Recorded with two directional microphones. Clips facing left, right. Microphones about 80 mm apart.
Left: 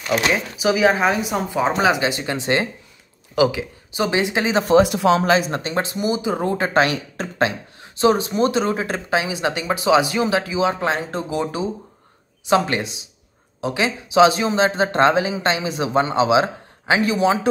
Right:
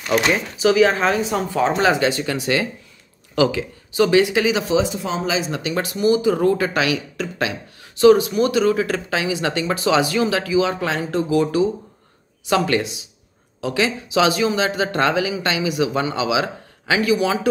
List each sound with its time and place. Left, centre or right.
0.6 s speech: centre
3.3 s speech: centre; by 4.7 s left
4.7 s speech: left
5.3 s speech: left
5.6 s speech: left